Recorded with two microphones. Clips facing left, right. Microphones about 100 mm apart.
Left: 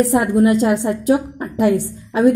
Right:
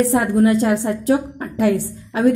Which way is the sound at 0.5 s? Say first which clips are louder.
Left 1 dB; 20° left (ahead or behind).